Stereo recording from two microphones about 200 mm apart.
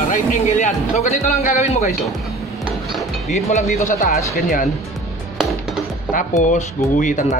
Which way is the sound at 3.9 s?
40° left (ahead or behind).